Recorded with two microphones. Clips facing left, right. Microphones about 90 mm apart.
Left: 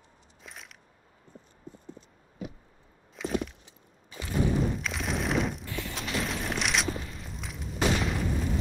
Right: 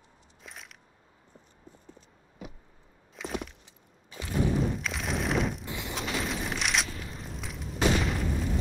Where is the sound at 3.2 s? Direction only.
Centre (ahead or behind).